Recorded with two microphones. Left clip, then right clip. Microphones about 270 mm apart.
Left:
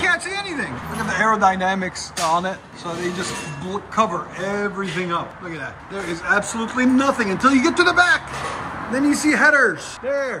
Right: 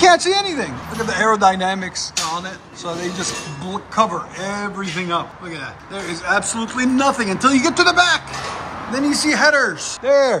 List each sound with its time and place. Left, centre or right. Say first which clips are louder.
0.0 s speech: right 8 dB; centre
3.7 s a man's voice: right 2 dB; centre
10.0 s speech: right 9 dB; right